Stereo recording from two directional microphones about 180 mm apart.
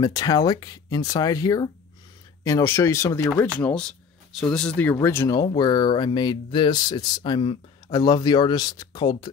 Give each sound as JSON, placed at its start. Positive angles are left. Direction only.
{"t": 0.0, "sound": "speech", "side_deg": 20}
{"t": 3.5, "sound": "speech", "side_deg": 5}